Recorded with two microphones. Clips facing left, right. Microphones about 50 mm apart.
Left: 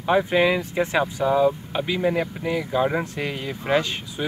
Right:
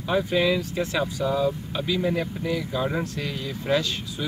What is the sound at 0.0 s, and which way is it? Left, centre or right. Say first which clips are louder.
Speech: left 4 dB; left.